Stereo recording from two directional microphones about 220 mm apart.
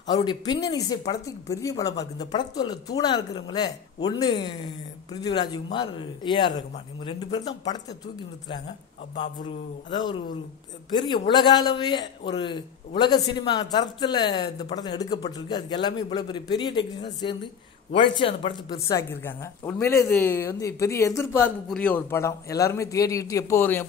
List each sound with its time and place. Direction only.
0.0 s a man's voice: 20° left (ahead or behind)
9.8 s a man's voice: 20° left (ahead or behind)